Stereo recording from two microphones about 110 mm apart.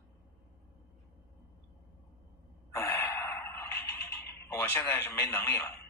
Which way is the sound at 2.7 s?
20° left (ahead or behind).